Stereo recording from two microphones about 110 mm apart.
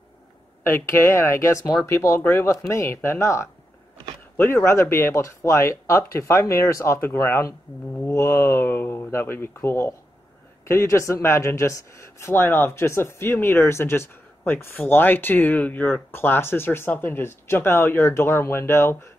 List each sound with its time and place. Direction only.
0.7 s speech: 20° left (ahead or behind)